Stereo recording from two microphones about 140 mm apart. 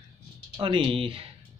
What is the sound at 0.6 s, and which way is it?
Speech, 40° right (ahead or behind).